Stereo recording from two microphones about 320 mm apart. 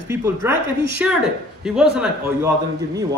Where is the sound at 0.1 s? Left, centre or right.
Centre.